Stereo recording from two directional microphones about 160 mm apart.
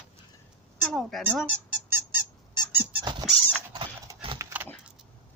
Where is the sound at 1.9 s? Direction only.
15° right (ahead or behind).